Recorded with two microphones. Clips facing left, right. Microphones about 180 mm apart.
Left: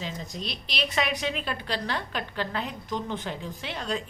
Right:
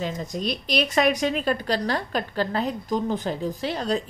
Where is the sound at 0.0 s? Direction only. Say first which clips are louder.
Right 7 dB; 50° right (ahead or behind).